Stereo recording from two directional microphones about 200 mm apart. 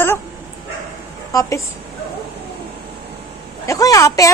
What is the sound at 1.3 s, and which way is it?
Speech, 15° left (ahead or behind).